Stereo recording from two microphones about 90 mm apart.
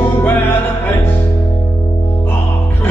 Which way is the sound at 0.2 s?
20° left (ahead or behind).